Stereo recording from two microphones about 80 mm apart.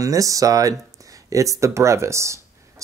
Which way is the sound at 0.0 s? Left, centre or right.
Right.